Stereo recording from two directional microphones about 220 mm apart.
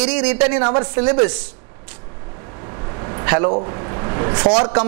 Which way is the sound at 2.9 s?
20° right (ahead or behind).